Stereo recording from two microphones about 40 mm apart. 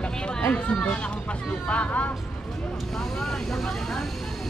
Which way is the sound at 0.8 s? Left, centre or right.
Left.